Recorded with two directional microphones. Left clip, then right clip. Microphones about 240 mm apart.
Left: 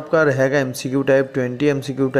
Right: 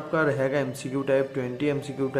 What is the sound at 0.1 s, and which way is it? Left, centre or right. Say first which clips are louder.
A man's voice: left 8 dB; left.